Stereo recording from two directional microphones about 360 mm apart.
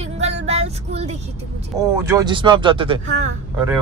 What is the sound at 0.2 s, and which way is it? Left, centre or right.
Vehicle, centre.